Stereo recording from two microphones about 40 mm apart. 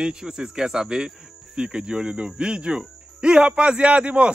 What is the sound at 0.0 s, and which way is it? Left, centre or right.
A man's voice, centre.